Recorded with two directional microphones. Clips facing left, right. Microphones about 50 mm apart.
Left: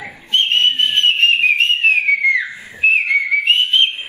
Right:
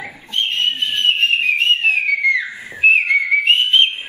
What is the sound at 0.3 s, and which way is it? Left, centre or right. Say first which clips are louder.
Whistle: left 4 dB; left.